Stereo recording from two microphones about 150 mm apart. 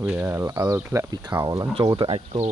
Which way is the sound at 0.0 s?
10° right (ahead or behind).